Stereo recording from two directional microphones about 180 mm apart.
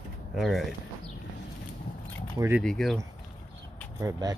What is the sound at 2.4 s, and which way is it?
Speech, 15° right (ahead or behind).